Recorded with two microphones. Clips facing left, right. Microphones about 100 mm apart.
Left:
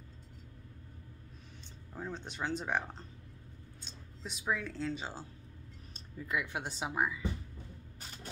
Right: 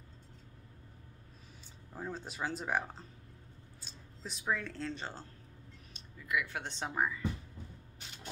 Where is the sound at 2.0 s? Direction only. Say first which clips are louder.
Even; 5° right (ahead or behind).